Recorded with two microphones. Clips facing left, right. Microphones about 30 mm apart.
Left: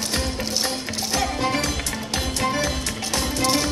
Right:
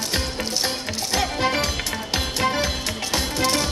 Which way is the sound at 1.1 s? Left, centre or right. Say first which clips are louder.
Right 1 dB; centre.